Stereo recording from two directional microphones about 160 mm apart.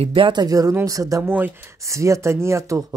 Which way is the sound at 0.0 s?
30° right (ahead or behind).